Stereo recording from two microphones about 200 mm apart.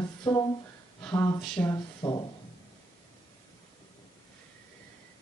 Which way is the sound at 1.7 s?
20° left (ahead or behind).